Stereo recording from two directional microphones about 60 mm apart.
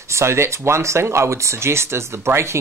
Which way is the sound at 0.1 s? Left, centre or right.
Right.